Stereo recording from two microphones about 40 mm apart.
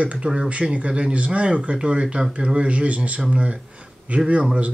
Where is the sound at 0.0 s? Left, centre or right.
Right.